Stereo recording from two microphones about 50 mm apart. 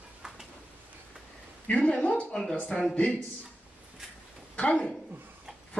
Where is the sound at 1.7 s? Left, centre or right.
Left.